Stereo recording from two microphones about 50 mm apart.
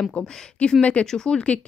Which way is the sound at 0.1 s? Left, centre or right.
Centre.